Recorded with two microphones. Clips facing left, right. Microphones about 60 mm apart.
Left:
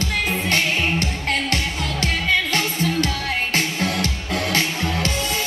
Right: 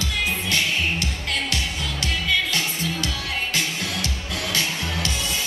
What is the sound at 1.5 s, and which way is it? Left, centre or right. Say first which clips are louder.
Music: left 4 dB; left.